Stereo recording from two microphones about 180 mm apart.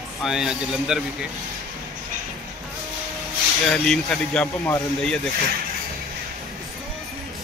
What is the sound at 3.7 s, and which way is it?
Speech, 5° left (ahead or behind).